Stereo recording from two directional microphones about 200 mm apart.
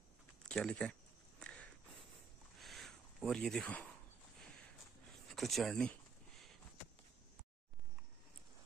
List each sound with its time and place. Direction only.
0.5 s speech: 5° left (ahead or behind)
1.4 s a sound: 5° left (ahead or behind)
5.3 s speech: centre (ahead or behind)